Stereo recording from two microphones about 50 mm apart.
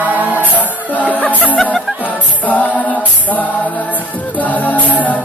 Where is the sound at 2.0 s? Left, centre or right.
Left.